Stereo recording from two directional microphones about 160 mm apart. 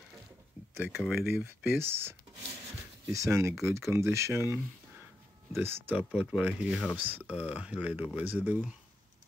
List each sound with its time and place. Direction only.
0.7 s speech: 5° right (ahead or behind)
1.3 s speech: 15° right (ahead or behind)
5.6 s speech: 10° right (ahead or behind)